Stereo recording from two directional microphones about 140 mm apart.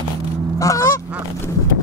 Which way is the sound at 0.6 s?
25° left (ahead or behind).